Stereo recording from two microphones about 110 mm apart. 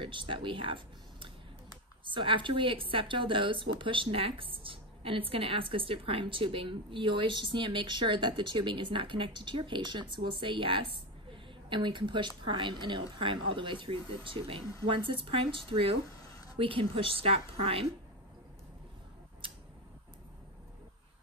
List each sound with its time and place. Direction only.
0.0 s a woman's voice: 50° right (ahead or behind)